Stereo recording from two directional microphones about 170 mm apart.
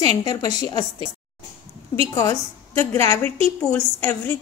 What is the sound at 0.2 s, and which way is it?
Speech, 20° left (ahead or behind).